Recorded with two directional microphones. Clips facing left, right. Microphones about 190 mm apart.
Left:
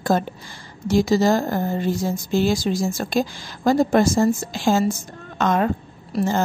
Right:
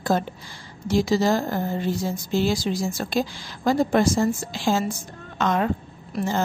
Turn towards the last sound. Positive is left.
turn(degrees=45)  # may be behind; listen again after turning